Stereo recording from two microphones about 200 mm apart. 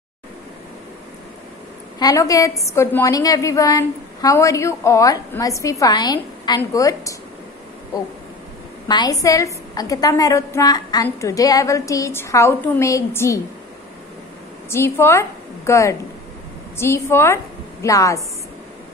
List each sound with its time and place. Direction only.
2.0 s a woman's voice: 15° left (ahead or behind)
8.8 s a woman's voice: 20° left (ahead or behind)
14.7 s a woman's voice: 15° left (ahead or behind)